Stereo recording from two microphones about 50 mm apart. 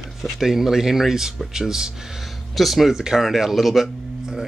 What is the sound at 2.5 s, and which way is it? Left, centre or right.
Speech, centre.